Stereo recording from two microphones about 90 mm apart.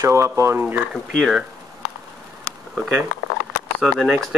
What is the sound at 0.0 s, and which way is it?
Speech, 35° right (ahead or behind).